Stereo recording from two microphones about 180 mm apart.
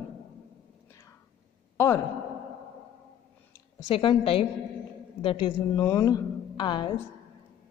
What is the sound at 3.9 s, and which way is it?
A woman's voice, 30° left (ahead or behind).